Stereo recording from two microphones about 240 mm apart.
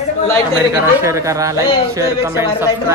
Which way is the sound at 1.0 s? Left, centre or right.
Centre.